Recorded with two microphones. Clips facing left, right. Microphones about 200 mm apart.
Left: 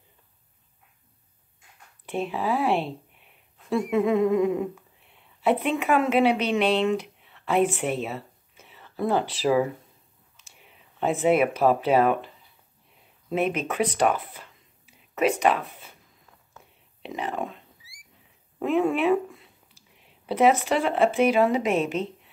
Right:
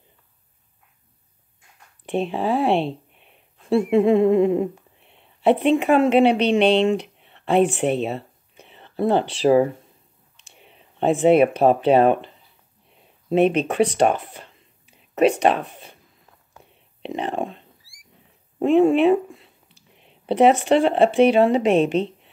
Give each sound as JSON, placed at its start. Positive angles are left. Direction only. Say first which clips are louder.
{"t": 2.0, "sound": "speech", "louder": "right 5 dB", "side_deg": -25}
{"t": 7.2, "sound": "a sound", "louder": "right 5 dB", "side_deg": -30}
{"t": 9.4, "sound": "speech", "louder": "right 7 dB", "side_deg": -30}
{"t": 10.7, "sound": "speech", "louder": "right 6 dB", "side_deg": -30}
{"t": 13.3, "sound": "speech", "louder": "right 8 dB", "side_deg": -30}
{"t": 16.5, "sound": "whispering", "louder": "right 3 dB", "side_deg": -30}
{"t": 18.6, "sound": "speech", "louder": "right 7 dB", "side_deg": -25}